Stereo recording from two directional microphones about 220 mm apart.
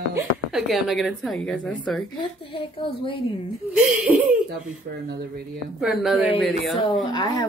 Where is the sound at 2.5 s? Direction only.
25° left (ahead or behind).